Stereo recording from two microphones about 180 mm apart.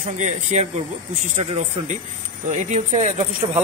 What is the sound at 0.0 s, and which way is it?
Speech, 40° right (ahead or behind).